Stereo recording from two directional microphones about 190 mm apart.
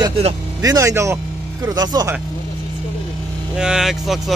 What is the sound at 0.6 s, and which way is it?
Speech, 15° right (ahead or behind).